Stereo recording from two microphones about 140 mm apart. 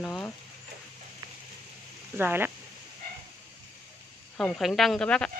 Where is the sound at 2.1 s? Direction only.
15° right (ahead or behind).